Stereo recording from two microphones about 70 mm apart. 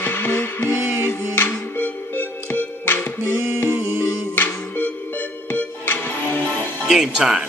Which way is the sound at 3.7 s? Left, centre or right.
Right.